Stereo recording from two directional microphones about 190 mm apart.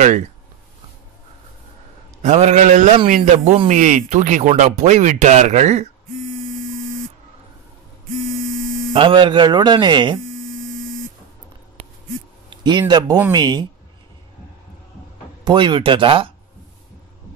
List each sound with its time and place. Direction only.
2.2 s speech: 35° right (ahead or behind)
8.9 s speech: 25° right (ahead or behind)
12.4 s speech: 25° right (ahead or behind)
15.4 s speech: 25° right (ahead or behind)